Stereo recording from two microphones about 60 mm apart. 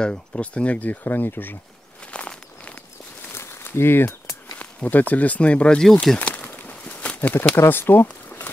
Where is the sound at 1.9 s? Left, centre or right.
Centre.